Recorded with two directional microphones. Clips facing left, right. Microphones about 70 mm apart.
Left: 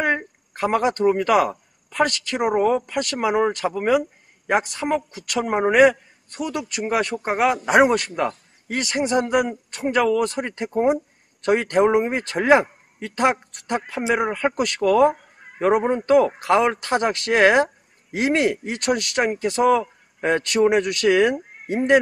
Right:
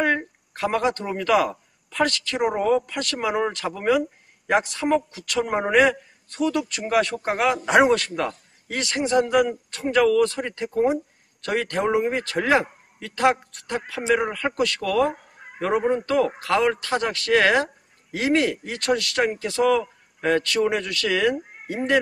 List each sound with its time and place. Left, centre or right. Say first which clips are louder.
0.0 s a sound: even; centre
0.9 s a man's voice: left 4 dB; left
12.5 s a sound: left 3 dB; left
13.7 s a man's voice: left 2 dB; left
14.0 s speech: even; centre
14.3 s a man's voice: left 2 dB; left